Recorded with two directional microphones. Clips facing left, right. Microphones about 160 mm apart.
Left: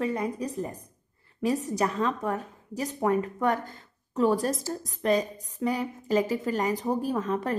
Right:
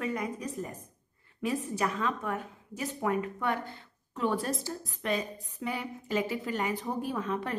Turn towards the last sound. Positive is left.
turn(degrees=40)  # may be behind; listen again after turning